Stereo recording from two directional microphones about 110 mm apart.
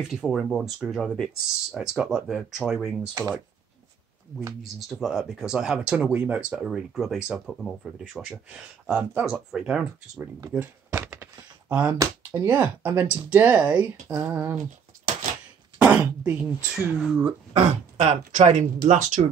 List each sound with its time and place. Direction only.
0.0 s speech: 5° right (ahead or behind)
1.8 s speech: 5° right (ahead or behind)
5.0 s speech: 5° right (ahead or behind)
10.6 s typing: 15° right (ahead or behind)
11.7 s speech: 15° right (ahead or behind)
12.0 s speech: 30° right (ahead or behind)
12.4 s speech: 15° right (ahead or behind)
15.8 s throat clearing: 15° right (ahead or behind)
17.6 s speech: 80° right